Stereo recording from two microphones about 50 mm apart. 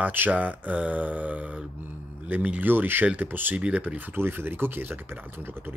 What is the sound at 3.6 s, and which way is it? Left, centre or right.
Speech, right.